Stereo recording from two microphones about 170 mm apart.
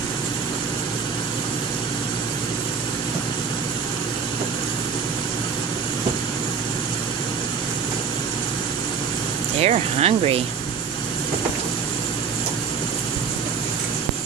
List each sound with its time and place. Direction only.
9.6 s speech: 40° right (ahead or behind)